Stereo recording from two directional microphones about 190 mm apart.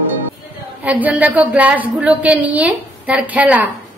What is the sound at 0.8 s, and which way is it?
A woman's voice, 10° right (ahead or behind).